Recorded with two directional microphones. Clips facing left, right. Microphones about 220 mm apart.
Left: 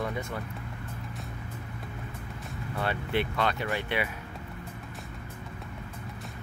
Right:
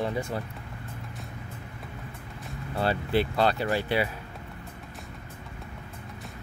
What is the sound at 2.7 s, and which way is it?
Speech, 30° right (ahead or behind).